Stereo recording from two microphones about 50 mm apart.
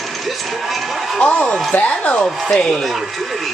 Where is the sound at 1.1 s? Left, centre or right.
Centre.